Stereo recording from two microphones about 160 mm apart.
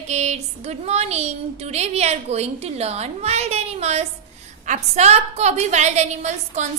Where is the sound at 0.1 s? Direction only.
45° right (ahead or behind).